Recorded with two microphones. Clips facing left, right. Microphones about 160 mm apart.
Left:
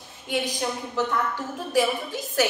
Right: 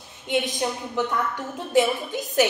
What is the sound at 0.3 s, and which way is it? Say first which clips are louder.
A woman's voice: right 2 dB; 20° right (ahead or behind).